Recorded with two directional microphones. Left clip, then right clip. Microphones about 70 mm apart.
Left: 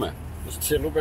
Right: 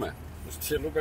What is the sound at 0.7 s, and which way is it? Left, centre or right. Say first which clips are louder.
Speech: left 6 dB; centre.